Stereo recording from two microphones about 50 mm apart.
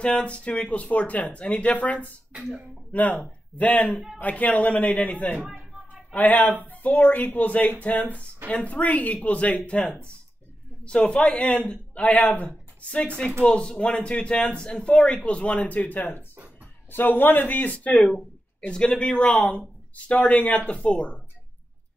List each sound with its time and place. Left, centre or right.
0.0 s speech: left
6.1 s speech: left
10.8 s speech: centre; by 17.7 s left
17.9 s speech: centre